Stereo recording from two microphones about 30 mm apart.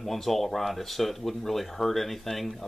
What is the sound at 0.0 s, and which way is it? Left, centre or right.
Speech, centre.